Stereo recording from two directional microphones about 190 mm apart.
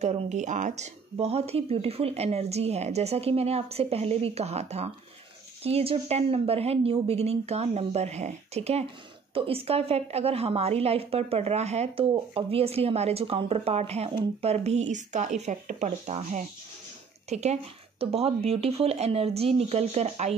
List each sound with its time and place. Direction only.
0.0 s speech: 35° right (ahead or behind)